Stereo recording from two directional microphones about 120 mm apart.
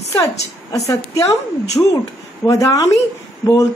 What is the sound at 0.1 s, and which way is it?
A woman's voice, 25° left (ahead or behind).